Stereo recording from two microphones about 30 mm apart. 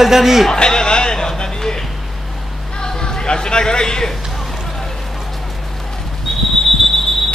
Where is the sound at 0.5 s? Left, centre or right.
Left.